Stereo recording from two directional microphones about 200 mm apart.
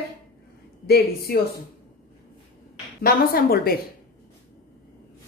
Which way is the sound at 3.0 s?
50° left (ahead or behind).